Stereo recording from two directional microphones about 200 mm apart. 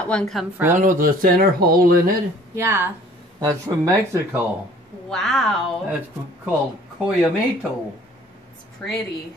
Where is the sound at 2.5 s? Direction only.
15° right (ahead or behind).